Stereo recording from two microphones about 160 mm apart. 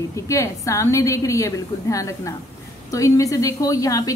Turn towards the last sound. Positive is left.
turn(degrees=20)  # may be behind; listen again after turning